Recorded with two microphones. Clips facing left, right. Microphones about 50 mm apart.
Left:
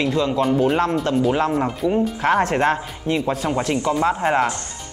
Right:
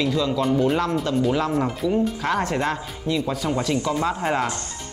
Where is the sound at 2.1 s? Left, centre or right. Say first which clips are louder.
Left 5 dB; left.